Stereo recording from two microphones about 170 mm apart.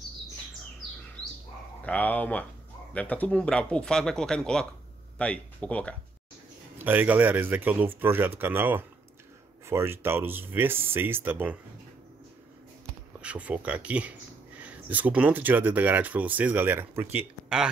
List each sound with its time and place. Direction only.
1.8 s speech: 10° left (ahead or behind)
6.8 s speech: 10° right (ahead or behind)
13.2 s speech: 10° right (ahead or behind)